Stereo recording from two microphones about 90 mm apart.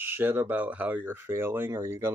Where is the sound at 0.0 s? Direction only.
25° right (ahead or behind).